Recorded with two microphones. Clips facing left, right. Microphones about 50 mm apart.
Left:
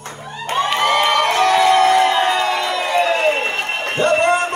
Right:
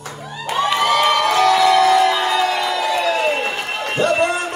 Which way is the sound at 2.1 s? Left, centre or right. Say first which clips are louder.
Left 1 dB; left.